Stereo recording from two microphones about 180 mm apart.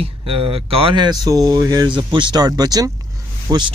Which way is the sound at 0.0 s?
30° right (ahead or behind).